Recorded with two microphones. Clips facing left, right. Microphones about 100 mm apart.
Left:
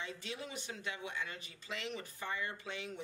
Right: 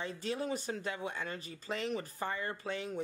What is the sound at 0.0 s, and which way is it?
Speech, 40° right (ahead or behind).